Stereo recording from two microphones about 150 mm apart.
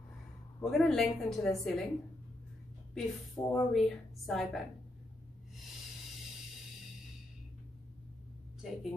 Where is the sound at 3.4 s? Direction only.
25° left (ahead or behind).